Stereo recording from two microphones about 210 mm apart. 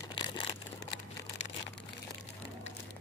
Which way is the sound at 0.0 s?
20° left (ahead or behind).